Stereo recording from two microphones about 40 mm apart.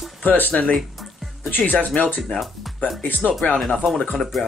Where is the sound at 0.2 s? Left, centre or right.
Left.